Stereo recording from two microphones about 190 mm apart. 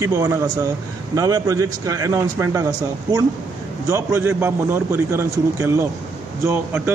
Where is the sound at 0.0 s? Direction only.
15° right (ahead or behind).